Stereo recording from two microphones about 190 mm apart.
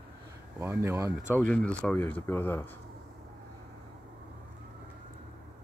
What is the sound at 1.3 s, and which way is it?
Speech, 5° left (ahead or behind).